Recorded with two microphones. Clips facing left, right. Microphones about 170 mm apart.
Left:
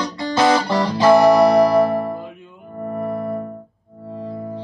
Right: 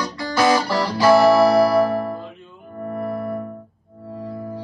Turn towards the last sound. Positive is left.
turn(degrees=25)  # may be behind; listen again after turning